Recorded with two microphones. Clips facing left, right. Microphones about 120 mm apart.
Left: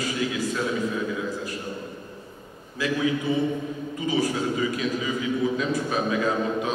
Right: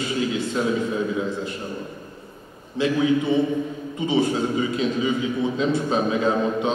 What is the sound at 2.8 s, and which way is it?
A man's voice, 25° right (ahead or behind).